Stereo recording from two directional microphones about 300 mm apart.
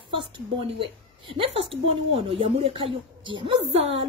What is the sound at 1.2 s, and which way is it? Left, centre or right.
Speech, centre.